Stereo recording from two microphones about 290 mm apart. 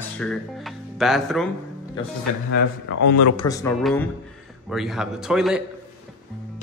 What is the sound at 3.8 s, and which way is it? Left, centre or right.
Speech, centre.